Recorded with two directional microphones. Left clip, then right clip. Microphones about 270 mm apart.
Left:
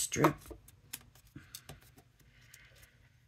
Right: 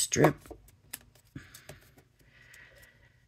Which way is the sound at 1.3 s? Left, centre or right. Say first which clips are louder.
Right 6 dB; right.